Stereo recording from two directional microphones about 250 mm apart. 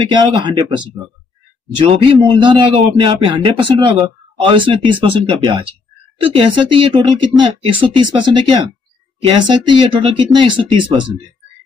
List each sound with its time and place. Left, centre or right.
0.1 s a man's voice: centre